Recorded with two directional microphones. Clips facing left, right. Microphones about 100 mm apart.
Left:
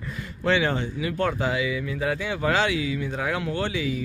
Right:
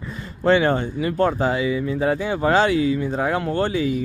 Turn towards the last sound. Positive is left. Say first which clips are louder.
# right 6 dB
turn(degrees=-40)  # may be behind; listen again after turning